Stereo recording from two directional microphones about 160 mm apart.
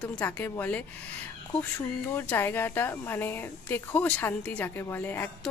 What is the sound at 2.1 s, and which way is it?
A woman's voice, 15° left (ahead or behind).